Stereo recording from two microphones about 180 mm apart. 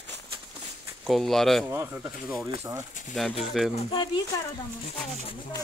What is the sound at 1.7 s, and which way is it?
Speech, 15° right (ahead or behind).